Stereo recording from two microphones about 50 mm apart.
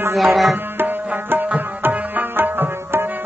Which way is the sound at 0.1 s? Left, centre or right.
Centre.